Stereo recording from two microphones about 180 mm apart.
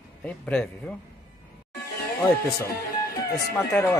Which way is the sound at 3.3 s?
10° left (ahead or behind).